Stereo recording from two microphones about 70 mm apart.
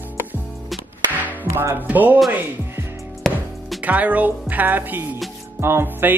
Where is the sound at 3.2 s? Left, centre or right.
Centre.